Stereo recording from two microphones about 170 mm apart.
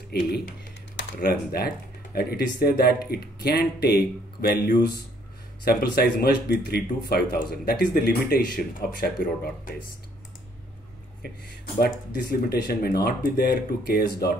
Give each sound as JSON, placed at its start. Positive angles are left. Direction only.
{"t": 0.1, "sound": "speech", "side_deg": 70}
{"t": 11.8, "sound": "speech", "side_deg": 65}